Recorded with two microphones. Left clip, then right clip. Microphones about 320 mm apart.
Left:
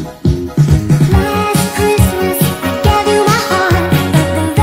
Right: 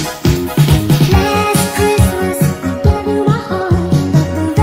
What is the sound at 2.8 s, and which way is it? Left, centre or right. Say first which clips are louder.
Music: left 5 dB; left.